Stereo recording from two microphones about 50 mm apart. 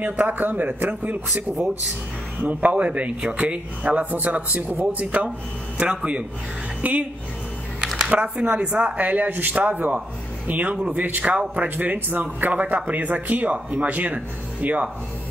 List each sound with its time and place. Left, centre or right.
0.0 s a man's voice: right
2.4 s a man's voice: right
8.1 s a man's voice: right